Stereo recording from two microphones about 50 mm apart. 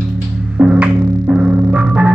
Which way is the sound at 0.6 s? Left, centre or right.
Right.